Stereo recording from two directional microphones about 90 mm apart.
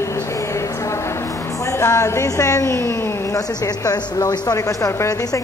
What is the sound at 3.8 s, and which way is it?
A woman's voice, 45° left (ahead or behind).